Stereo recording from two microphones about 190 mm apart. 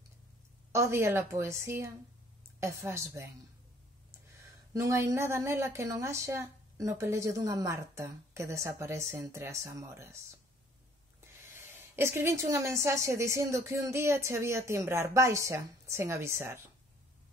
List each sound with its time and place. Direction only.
0.7 s a woman's voice: 15° right (ahead or behind)
4.7 s a woman's voice: 15° right (ahead or behind)
11.4 s a woman's voice: 10° right (ahead or behind)